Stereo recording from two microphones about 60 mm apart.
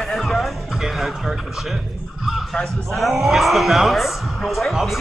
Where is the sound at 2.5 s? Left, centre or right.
Centre.